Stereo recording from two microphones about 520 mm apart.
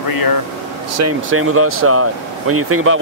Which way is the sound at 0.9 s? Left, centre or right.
Right.